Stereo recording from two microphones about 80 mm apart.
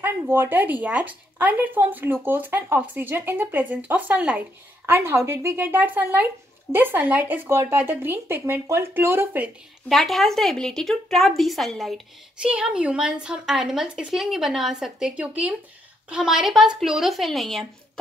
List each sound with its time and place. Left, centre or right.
0.0 s speech: right
4.8 s speech: right
9.8 s a woman's voice: centre
12.4 s a woman's voice: centre